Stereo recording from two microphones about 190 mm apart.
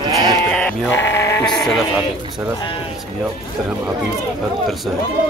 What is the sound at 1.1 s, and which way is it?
Sheep, 15° left (ahead or behind).